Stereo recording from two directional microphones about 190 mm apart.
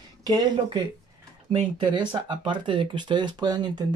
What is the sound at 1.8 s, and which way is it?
Speech, 25° right (ahead or behind).